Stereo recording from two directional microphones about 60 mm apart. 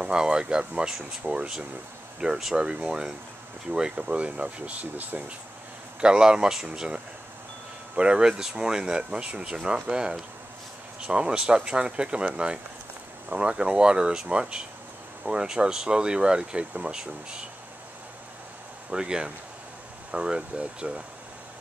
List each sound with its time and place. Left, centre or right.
0.0 s speech: centre
18.9 s speech: centre